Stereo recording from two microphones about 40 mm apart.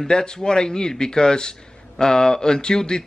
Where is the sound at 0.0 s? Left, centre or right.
Centre.